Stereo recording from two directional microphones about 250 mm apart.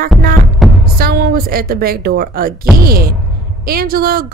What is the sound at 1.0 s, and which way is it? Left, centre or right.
Speech, right.